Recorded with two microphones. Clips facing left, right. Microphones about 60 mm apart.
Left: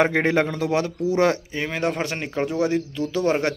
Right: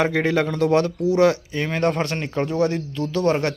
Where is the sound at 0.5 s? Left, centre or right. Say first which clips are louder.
Right 4 dB; centre.